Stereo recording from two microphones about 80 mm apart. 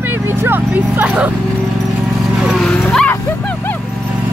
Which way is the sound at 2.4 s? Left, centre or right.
Centre.